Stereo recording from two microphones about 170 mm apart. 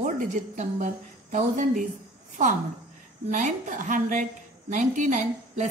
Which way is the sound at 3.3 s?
50° right (ahead or behind).